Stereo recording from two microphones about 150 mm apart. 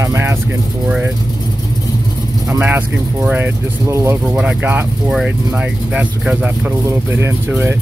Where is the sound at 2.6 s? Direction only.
10° right (ahead or behind).